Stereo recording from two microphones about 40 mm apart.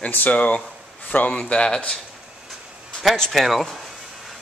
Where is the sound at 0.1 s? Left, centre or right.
Left.